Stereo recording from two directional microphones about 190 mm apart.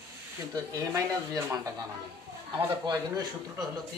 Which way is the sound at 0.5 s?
20° right (ahead or behind).